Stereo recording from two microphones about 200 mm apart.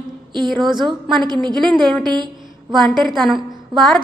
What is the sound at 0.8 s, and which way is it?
Speech, 25° right (ahead or behind).